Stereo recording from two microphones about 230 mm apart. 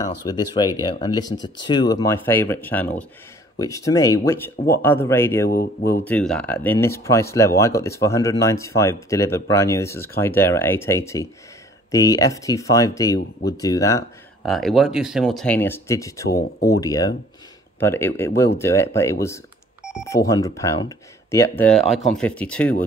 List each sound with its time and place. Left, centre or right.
0.0 s speech: centre
5.5 s speech: left
6.0 s speech: centre
14.4 s speech: centre
16.5 s speech: left
16.8 s speech: centre